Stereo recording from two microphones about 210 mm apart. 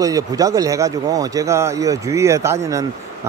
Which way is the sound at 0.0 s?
15° right (ahead or behind).